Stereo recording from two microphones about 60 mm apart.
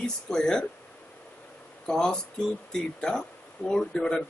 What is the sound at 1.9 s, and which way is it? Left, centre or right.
Speech, centre.